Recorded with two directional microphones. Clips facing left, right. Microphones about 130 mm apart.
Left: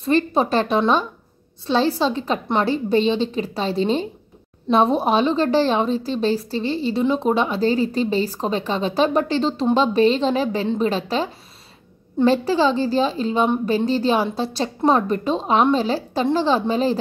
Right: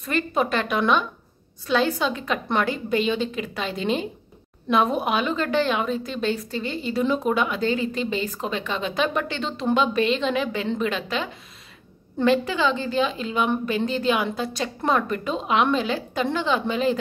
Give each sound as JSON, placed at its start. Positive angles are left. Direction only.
{"t": 0.0, "sound": "a woman's voice", "side_deg": 30}
{"t": 12.3, "sound": "a woman's voice", "side_deg": 35}